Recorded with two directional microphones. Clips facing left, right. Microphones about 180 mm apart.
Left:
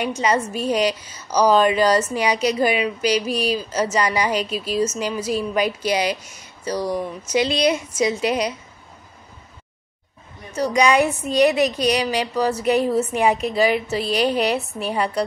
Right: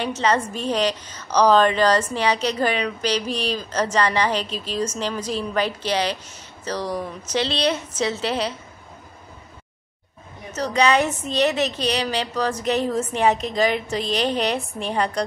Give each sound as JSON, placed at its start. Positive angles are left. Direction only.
{"t": 0.0, "sound": "a woman's voice", "side_deg": 10}
{"t": 10.5, "sound": "a woman's voice", "side_deg": 10}